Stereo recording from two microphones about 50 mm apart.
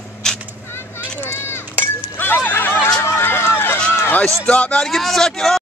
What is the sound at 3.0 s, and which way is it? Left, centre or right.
Run, left.